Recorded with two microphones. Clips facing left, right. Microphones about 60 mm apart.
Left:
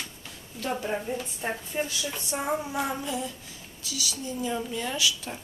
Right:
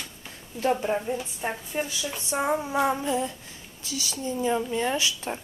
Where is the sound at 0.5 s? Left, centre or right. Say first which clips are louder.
Right 6 dB; right.